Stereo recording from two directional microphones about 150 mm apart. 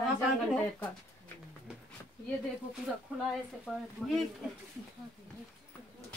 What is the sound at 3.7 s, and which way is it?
Speech, 5° right (ahead or behind).